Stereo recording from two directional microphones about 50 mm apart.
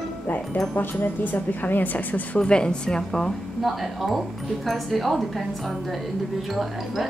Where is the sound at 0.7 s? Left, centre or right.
Left.